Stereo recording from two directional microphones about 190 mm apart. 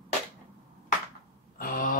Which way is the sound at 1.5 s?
50° left (ahead or behind).